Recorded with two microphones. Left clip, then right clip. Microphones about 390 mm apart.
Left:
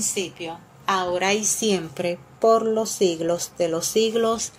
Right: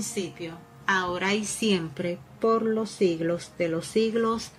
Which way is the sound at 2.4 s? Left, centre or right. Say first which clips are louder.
Left 6 dB; left.